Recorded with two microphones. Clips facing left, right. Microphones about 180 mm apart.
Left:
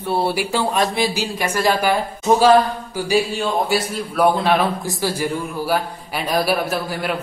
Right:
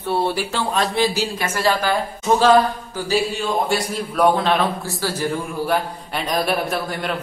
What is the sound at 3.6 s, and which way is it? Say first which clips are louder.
A woman's voice: left 1 dB; 5° left (ahead or behind).